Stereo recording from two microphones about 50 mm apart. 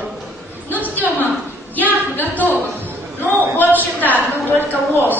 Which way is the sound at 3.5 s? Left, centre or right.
Left.